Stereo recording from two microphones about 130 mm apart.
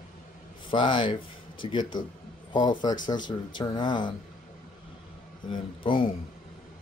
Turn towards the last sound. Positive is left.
turn(degrees=40)  # may be behind; listen again after turning